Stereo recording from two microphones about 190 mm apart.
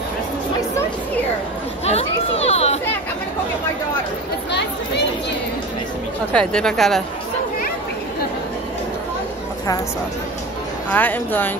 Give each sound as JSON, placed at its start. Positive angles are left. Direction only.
{"t": 1.9, "sound": "chatter", "side_deg": 35}
{"t": 4.5, "sound": "chatter", "side_deg": 65}
{"t": 6.3, "sound": "a woman's voice", "side_deg": 5}
{"t": 10.9, "sound": "speech", "side_deg": 10}